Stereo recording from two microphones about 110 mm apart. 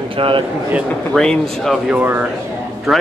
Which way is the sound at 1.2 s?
5° left (ahead or behind).